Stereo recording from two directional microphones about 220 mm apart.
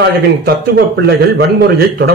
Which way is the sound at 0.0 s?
45° right (ahead or behind).